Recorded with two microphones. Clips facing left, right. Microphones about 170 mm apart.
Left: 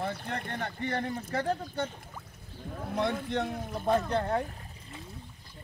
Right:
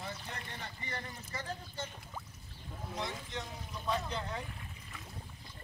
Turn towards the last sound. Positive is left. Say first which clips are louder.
# left 10 dB
turn(degrees=60)  # may be behind; listen again after turning